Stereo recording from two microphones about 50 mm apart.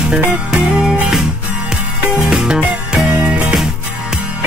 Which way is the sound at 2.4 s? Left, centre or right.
Centre.